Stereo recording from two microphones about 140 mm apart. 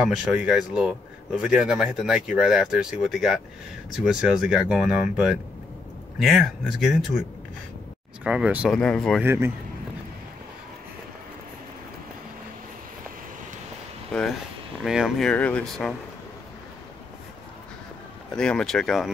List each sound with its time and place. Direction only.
0.0 s speech: 5° right (ahead or behind)
8.6 s speech: 5° left (ahead or behind)
9.2 s speech: 15° right (ahead or behind)
14.1 s speech: 5° left (ahead or behind)
18.3 s speech: 5° left (ahead or behind)